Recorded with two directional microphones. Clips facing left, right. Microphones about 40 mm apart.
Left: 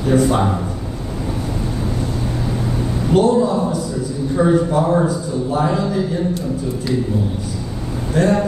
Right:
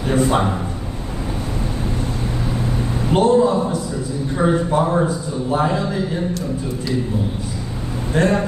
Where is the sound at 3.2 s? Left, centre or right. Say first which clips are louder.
Left 1 dB; right.